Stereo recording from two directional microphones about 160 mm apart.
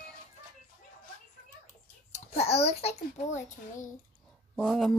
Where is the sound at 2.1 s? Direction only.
40° left (ahead or behind).